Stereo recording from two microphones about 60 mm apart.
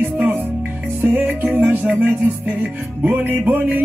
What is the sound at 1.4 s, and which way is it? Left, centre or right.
Music, right.